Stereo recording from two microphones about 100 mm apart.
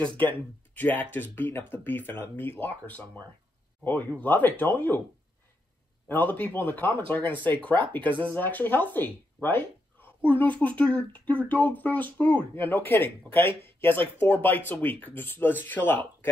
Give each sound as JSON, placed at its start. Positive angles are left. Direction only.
{"t": 0.2, "sound": "speech", "side_deg": 15}
{"t": 6.0, "sound": "speech", "side_deg": 20}
{"t": 7.3, "sound": "speech", "side_deg": -55}
{"t": 8.2, "sound": "speech", "side_deg": 20}